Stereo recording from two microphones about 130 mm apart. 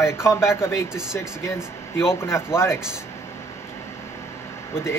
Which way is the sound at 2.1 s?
20° left (ahead or behind).